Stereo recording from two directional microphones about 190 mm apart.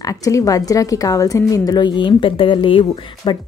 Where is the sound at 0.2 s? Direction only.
15° left (ahead or behind).